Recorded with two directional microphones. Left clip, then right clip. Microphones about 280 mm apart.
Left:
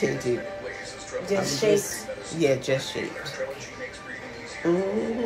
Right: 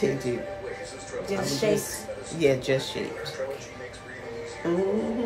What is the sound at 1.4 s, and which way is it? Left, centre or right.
Speech, centre.